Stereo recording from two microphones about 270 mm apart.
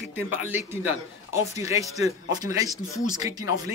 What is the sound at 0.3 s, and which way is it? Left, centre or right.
Speech, centre.